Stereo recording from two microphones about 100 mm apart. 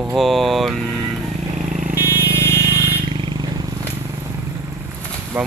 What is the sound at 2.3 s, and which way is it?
Vehicle, 90° right.